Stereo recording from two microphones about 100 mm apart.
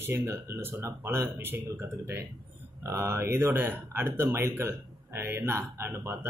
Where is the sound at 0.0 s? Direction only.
30° right (ahead or behind).